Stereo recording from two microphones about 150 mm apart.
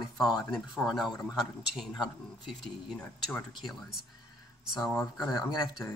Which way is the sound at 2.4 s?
5° left (ahead or behind).